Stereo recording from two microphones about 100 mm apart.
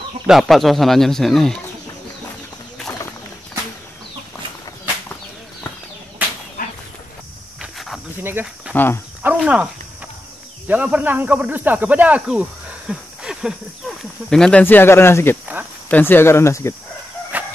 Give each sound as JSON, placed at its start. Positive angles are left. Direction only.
{"t": 0.3, "sound": "speech", "side_deg": 0}
{"t": 6.2, "sound": "fowl", "side_deg": -15}
{"t": 7.7, "sound": "cricket", "side_deg": 0}
{"t": 8.2, "sound": "speech", "side_deg": -20}
{"t": 8.7, "sound": "speech", "side_deg": 20}
{"t": 9.2, "sound": "speech", "side_deg": -15}
{"t": 10.7, "sound": "speech", "side_deg": -15}
{"t": 14.3, "sound": "speech", "side_deg": 5}
{"t": 14.6, "sound": "speech", "side_deg": 20}
{"t": 17.3, "sound": "a sound", "side_deg": -15}